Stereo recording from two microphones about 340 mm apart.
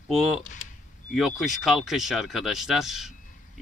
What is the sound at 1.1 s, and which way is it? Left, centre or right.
Speech, centre.